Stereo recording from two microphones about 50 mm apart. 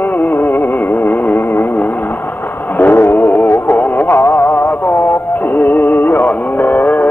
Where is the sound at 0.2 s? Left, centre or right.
Left.